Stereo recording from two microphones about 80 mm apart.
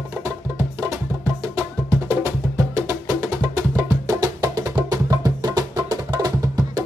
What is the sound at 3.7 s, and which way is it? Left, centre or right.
Music, right.